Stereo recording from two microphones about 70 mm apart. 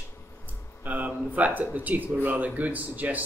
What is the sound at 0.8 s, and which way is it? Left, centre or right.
Speech, right.